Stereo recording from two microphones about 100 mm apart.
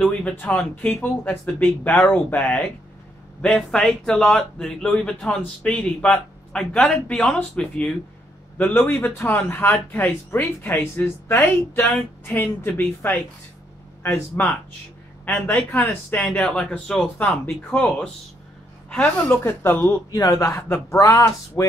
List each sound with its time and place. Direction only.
0.0 s a man's voice: 10° left (ahead or behind)
20.1 s speech: 35° left (ahead or behind)
21.0 s speech: 35° left (ahead or behind)